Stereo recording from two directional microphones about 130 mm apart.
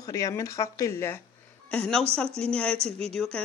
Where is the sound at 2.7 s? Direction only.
50° right (ahead or behind).